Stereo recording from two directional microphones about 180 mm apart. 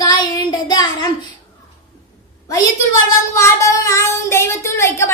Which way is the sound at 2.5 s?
20° left (ahead or behind).